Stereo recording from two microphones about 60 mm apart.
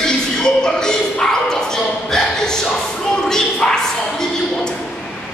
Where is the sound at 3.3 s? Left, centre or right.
Centre.